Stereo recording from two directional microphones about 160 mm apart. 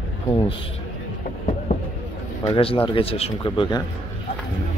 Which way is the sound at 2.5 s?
35° left (ahead or behind).